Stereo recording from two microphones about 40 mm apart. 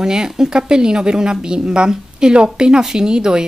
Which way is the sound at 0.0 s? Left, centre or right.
Centre.